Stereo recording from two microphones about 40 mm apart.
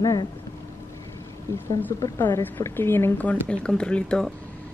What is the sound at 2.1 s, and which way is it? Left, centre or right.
A woman's voice, left.